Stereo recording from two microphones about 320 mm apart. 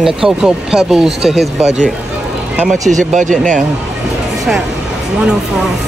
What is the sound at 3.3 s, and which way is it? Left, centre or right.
Speech, centre.